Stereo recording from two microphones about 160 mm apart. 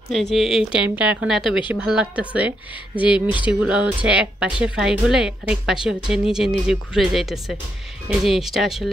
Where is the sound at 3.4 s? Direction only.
10° right (ahead or behind).